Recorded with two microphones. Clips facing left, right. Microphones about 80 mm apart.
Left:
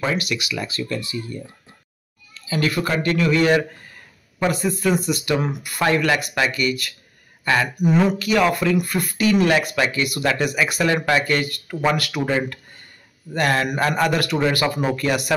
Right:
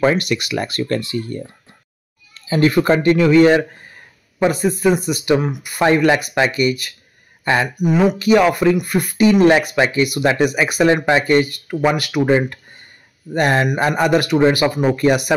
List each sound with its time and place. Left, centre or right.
0.0 s speech: right
2.3 s speech: right
7.8 s speech: centre
8.2 s speech: right